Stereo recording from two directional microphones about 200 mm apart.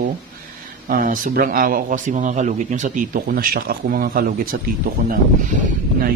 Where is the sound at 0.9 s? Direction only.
45° right (ahead or behind).